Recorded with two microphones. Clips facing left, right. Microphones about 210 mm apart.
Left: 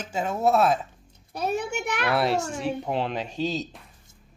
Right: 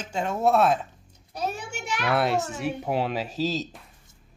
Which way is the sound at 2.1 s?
Centre (ahead or behind).